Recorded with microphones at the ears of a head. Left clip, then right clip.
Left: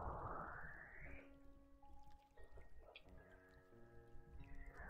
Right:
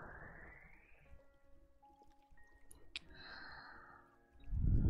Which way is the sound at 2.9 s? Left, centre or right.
Right.